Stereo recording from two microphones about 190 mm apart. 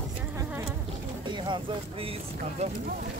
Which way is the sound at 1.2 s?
25° right (ahead or behind).